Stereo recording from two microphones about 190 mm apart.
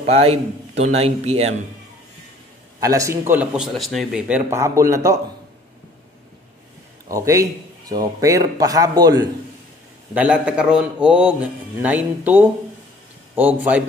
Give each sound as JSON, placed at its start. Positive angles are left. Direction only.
{"t": 0.0, "sound": "a man's voice", "side_deg": -30}
{"t": 2.8, "sound": "speech", "side_deg": -15}
{"t": 4.5, "sound": "a man's voice", "side_deg": -15}
{"t": 7.1, "sound": "a man's voice", "side_deg": -15}
{"t": 10.1, "sound": "a man's voice", "side_deg": -5}